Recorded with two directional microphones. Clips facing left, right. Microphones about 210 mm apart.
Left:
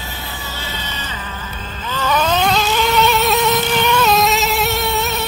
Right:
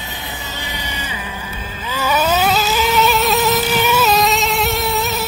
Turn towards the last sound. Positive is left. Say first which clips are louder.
# even
turn(degrees=0)  # may be behind; listen again after turning